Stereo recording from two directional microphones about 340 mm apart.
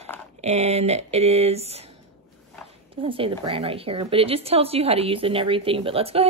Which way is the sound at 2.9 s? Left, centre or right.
Centre.